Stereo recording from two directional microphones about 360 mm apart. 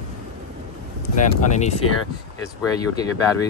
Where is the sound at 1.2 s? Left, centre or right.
Centre.